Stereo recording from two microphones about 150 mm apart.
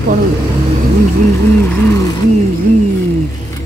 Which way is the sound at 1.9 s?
25° left (ahead or behind).